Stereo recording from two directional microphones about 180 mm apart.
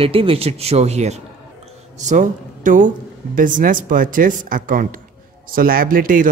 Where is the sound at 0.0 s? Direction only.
30° right (ahead or behind).